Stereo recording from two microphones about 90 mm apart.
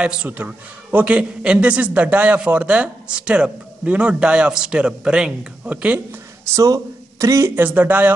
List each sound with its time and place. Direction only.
0.0 s a man's voice: 15° right (ahead or behind)
6.4 s speech: 35° right (ahead or behind); by 8.1 s 20° right (ahead or behind)